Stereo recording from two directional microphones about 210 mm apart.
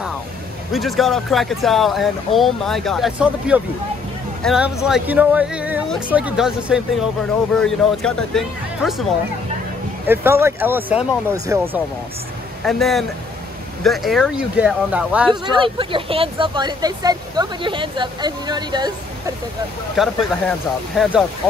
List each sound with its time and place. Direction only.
0.7 s speech: centre (ahead or behind)
10.0 s speech: 10° right (ahead or behind)
12.6 s speech: centre (ahead or behind)
15.2 s speech: 25° right (ahead or behind)
20.0 s speech: centre (ahead or behind)